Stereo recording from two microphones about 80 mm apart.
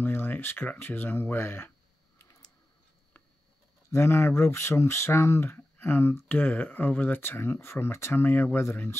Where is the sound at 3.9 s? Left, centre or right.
Left.